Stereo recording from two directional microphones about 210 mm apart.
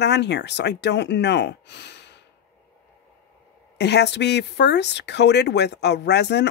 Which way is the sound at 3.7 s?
55° left (ahead or behind).